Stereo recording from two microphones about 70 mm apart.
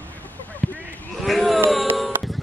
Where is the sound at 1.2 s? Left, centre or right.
Centre.